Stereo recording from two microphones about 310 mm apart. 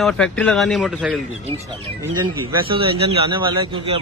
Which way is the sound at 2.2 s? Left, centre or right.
Centre.